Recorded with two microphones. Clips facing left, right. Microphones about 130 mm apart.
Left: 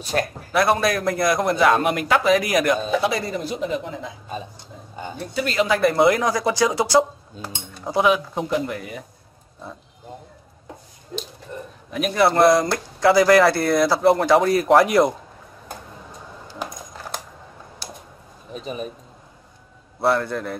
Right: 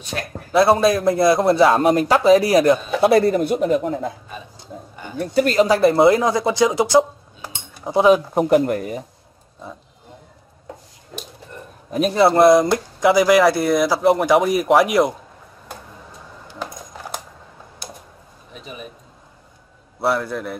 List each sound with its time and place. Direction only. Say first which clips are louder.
0.1 s speech: left 5 dB; 45° left (ahead or behind)
0.5 s a man's voice: right 6 dB; 25° right (ahead or behind)
3.0 s speech: right 9 dB; 55° right (ahead or behind)
5.2 s speech: right 7 dB; 50° right (ahead or behind); by 7.0 s 20° right (ahead or behind)
7.9 s a man's voice: right 5 dB; 30° right (ahead or behind)
8.4 s speech: right 8 dB; 60° right (ahead or behind); by 9.0 s 40° right (ahead or behind)
11.9 s speech: right 3 dB; 30° right (ahead or behind)
12.4 s a man's voice: right 4 dB; centre (ahead or behind)
12.6 s speech: right 2 dB; 15° right (ahead or behind)
18.5 s a man's voice: left 6 dB; 35° left (ahead or behind)
20.0 s a man's voice: even; 5° right (ahead or behind)